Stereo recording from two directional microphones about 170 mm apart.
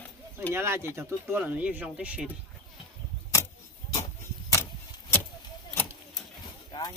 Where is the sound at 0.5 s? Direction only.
15° right (ahead or behind).